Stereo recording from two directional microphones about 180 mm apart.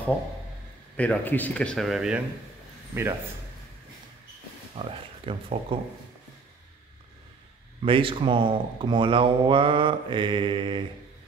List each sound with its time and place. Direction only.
0.9 s a man's voice: 10° left (ahead or behind); by 3.2 s 15° right (ahead or behind)
4.7 s speech: 30° right (ahead or behind)
7.8 s speech: 30° right (ahead or behind)